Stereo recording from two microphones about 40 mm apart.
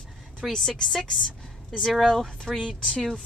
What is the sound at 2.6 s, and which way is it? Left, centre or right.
Speech, centre.